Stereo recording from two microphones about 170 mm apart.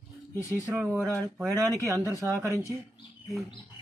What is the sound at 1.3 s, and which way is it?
Speech, 20° right (ahead or behind).